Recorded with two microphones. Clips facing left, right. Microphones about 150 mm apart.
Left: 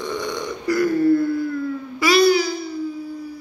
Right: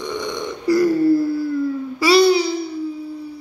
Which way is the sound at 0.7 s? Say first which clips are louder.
Right 2 dB; 30° right (ahead or behind).